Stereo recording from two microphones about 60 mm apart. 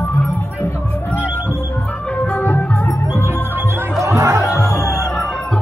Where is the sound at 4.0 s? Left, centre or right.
Right.